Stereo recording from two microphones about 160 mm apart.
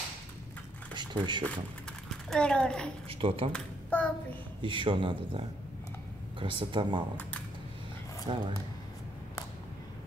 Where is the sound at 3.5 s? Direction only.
10° left (ahead or behind).